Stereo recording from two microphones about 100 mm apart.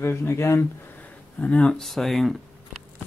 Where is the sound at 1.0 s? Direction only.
15° left (ahead or behind).